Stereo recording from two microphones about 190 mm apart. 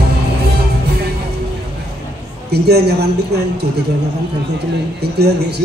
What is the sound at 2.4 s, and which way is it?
A man's voice, 60° right (ahead or behind).